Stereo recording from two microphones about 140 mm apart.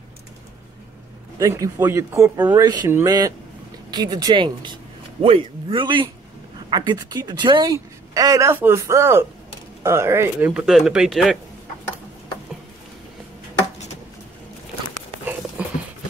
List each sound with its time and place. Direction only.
1.4 s speech: 25° right (ahead or behind)
10.5 s speech: 5° right (ahead or behind)